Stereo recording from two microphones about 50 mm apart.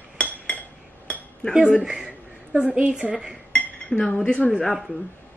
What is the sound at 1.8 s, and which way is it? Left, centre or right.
Speech, centre.